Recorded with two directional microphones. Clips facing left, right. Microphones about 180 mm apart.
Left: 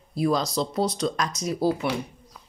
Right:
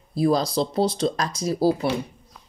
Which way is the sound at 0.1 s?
30° right (ahead or behind).